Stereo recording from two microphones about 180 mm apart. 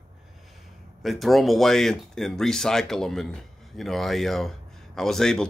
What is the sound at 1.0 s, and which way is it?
Speech, centre (ahead or behind).